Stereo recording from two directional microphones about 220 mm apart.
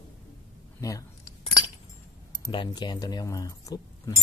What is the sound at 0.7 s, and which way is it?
Speech, 15° left (ahead or behind).